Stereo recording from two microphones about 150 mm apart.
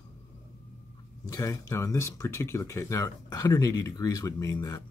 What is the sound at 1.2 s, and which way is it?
Speech, 20° left (ahead or behind).